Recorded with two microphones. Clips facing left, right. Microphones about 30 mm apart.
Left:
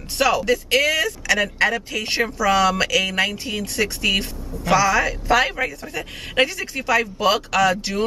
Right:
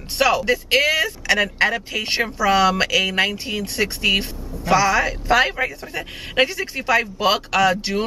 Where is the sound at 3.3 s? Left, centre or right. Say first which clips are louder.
Right 1 dB; centre.